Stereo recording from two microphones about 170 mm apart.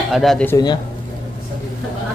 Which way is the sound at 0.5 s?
25° left (ahead or behind).